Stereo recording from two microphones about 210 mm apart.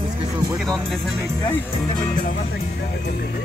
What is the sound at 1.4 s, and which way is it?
Speech, 10° left (ahead or behind).